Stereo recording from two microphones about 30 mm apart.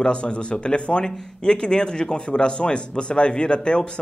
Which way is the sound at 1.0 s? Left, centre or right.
Left.